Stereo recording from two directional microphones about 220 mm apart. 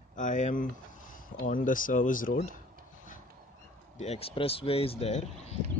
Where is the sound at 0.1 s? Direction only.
35° left (ahead or behind).